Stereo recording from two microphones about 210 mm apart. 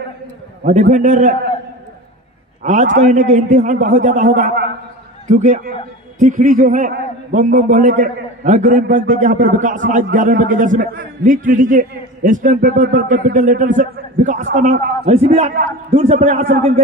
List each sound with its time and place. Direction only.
0.7 s a man's voice: 35° right (ahead or behind)
2.6 s a man's voice: 35° right (ahead or behind)